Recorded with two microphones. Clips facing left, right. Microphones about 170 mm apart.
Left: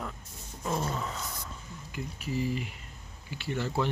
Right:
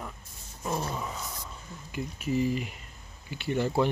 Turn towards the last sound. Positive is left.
turn(degrees=-15)  # may be behind; listen again after turning